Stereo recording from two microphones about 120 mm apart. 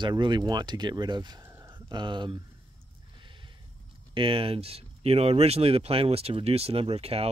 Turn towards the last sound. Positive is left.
turn(degrees=-55)  # may be behind; listen again after turning